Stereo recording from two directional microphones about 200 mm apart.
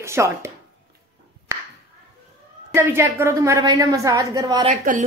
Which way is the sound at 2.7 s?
10° right (ahead or behind).